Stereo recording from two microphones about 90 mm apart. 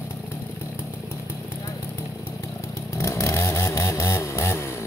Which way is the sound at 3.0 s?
35° left (ahead or behind).